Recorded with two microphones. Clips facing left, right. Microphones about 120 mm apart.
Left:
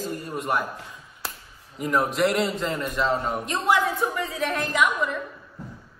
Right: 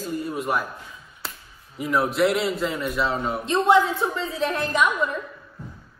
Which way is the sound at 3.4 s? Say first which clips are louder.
Right 8 dB; 25° right (ahead or behind).